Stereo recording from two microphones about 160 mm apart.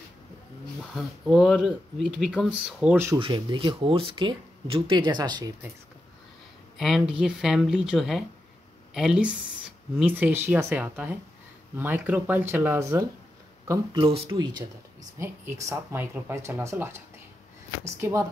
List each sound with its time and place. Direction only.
0.9 s speech: 5° right (ahead or behind)
3.2 s speech: 35° right (ahead or behind)
6.8 s speech: centre (ahead or behind)
14.0 s speech: 35° right (ahead or behind)
15.1 s speech: 15° right (ahead or behind)